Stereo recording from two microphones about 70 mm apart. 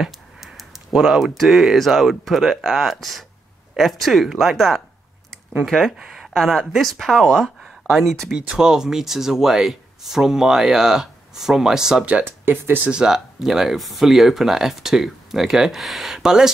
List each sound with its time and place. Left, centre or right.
0.0 s a sound: centre
0.9 s speech: centre
8.3 s speech: centre
12.1 s speech: right
12.4 s speech: right
12.8 s speech: centre